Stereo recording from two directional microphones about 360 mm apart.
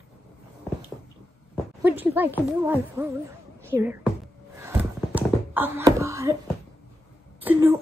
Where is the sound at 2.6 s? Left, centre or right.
Centre.